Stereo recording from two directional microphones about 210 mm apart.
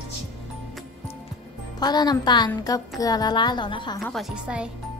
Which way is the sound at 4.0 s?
Centre (ahead or behind).